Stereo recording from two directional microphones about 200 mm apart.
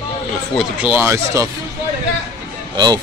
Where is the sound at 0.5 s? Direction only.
10° right (ahead or behind).